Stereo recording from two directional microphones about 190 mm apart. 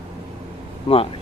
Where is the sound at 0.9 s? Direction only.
25° left (ahead or behind).